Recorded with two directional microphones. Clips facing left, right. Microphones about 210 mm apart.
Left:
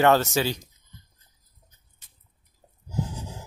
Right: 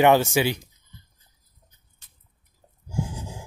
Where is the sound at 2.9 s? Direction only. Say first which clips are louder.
Right 1 dB; 10° right (ahead or behind).